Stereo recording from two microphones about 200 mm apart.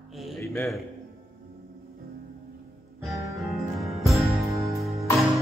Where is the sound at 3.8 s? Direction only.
Centre (ahead or behind).